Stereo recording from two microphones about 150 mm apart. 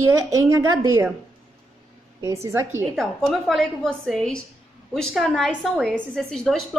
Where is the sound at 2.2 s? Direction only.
20° right (ahead or behind).